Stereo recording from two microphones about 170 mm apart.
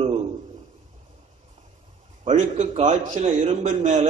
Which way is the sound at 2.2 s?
45° right (ahead or behind).